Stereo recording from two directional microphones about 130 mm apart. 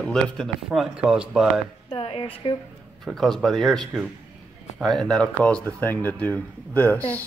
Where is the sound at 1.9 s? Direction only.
45° left (ahead or behind).